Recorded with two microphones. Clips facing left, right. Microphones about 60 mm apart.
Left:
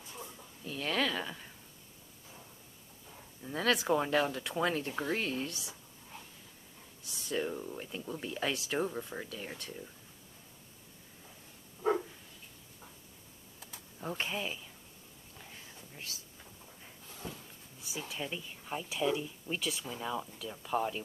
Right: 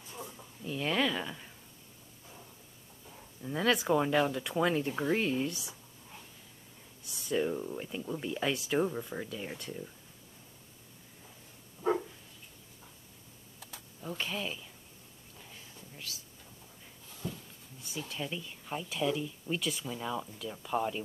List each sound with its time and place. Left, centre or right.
0.7 s speech: centre
3.4 s speech: centre
7.1 s speech: centre
14.0 s speech: left
17.2 s a sound: left
17.7 s speech: centre